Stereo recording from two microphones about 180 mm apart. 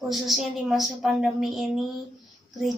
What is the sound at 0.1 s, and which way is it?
Speech, centre (ahead or behind).